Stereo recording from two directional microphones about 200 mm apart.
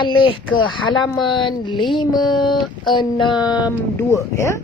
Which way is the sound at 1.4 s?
25° left (ahead or behind).